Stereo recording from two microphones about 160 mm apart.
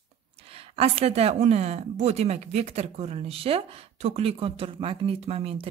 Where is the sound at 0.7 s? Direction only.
40° right (ahead or behind).